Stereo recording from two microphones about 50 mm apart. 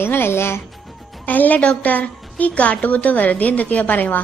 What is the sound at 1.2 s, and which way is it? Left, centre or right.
A woman's voice, left.